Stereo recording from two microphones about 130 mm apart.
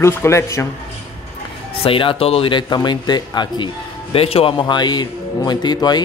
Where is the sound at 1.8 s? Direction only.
45° left (ahead or behind).